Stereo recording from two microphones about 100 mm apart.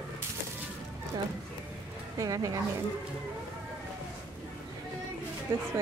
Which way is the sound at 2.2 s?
35° right (ahead or behind).